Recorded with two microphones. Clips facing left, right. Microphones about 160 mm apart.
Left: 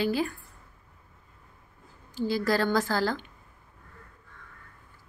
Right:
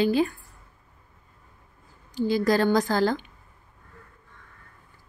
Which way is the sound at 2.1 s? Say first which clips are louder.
Right 4 dB; 15° right (ahead or behind).